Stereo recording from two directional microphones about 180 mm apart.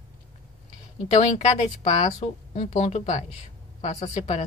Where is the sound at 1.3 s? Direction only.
40° left (ahead or behind).